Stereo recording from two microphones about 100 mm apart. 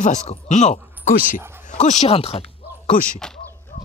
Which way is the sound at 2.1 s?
85° left.